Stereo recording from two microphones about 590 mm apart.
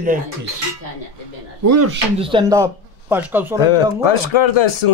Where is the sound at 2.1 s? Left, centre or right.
Centre.